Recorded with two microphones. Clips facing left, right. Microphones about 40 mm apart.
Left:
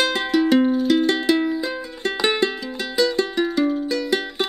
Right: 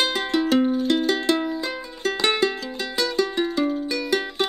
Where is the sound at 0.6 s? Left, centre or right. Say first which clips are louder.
Left 3 dB; centre.